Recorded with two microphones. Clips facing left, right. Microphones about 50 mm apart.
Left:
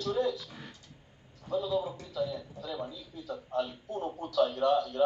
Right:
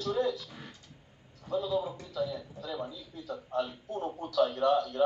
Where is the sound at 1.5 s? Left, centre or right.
Centre.